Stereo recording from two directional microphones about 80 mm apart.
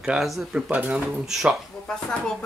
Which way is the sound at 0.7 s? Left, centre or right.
Centre.